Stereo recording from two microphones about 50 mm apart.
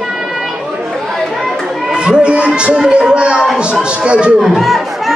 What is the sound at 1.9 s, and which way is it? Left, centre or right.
A man's voice, centre.